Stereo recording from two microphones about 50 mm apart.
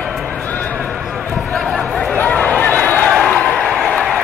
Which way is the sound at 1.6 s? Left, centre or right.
Left.